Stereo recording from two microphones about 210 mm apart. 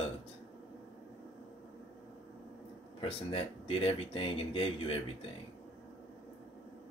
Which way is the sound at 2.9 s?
25° left (ahead or behind).